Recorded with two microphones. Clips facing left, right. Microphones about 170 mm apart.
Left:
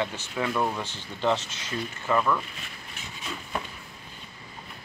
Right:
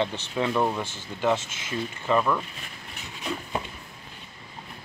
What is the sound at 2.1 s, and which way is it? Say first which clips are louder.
Speech: right 1 dB; 10° right (ahead or behind).